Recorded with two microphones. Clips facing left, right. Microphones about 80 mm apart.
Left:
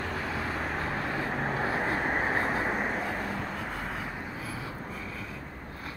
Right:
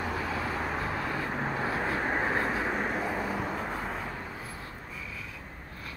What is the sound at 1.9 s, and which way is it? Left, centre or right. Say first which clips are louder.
Vehicle: even; left.